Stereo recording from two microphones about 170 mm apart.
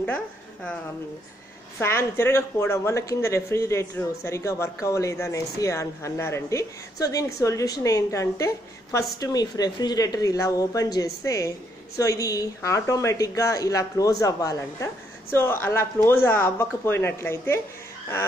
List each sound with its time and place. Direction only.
1.8 s a woman's voice: 15° left (ahead or behind)